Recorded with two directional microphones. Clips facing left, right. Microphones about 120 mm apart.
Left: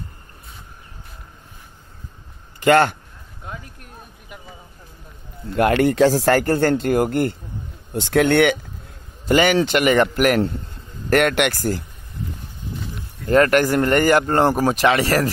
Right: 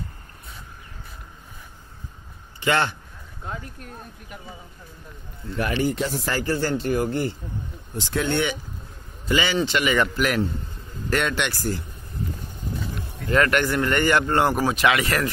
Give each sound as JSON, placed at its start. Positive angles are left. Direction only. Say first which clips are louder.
{"t": 2.6, "sound": "speech", "louder": "left 8 dB", "side_deg": 50}
{"t": 5.6, "sound": "speech", "louder": "left 9 dB", "side_deg": 65}
{"t": 6.3, "sound": "speech", "louder": "left 7 dB", "side_deg": 55}
{"t": 13.3, "sound": "speech", "louder": "left 5 dB", "side_deg": 40}